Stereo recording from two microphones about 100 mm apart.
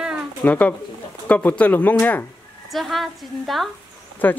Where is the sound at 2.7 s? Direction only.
Centre (ahead or behind).